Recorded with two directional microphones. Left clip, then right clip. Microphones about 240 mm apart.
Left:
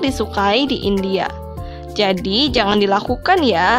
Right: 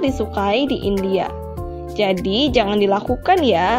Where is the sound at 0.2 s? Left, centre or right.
Centre.